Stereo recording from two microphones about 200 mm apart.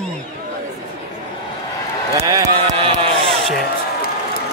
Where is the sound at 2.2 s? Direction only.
15° right (ahead or behind).